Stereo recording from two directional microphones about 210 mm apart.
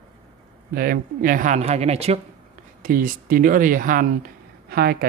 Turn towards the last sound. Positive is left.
turn(degrees=-50)  # may be behind; listen again after turning